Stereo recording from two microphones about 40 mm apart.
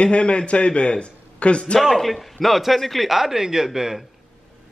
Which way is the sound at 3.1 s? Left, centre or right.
Centre.